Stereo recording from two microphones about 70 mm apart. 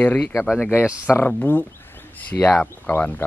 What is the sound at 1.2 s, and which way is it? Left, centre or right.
A man's voice, left.